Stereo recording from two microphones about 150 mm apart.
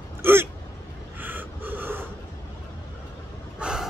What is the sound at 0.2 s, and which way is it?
Hiccup, 15° right (ahead or behind).